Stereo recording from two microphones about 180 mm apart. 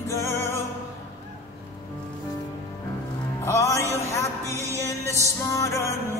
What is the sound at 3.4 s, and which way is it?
Music, 15° left (ahead or behind).